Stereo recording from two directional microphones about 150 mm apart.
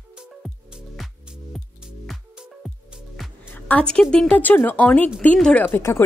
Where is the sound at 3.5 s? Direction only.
10° left (ahead or behind).